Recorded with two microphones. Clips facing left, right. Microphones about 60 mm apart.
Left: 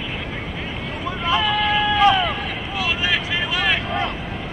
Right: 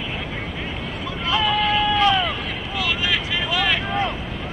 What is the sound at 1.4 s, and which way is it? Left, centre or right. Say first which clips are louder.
Vehicle: right 2 dB; centre.